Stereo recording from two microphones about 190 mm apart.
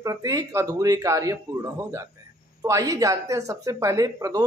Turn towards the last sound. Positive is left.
turn(degrees=-20)  # may be behind; listen again after turning